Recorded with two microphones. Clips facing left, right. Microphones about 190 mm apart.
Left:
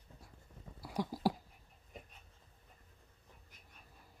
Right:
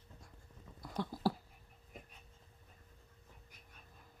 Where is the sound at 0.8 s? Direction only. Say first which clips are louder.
Left 1 dB; 10° left (ahead or behind).